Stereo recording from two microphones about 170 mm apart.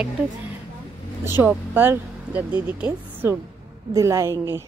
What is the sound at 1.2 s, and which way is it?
A woman's voice, 15° right (ahead or behind).